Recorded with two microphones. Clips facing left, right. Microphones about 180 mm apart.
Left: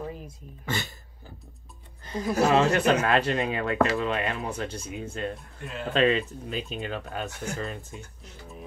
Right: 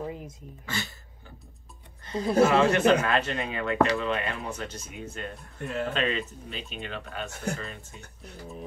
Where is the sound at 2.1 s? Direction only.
30° right (ahead or behind).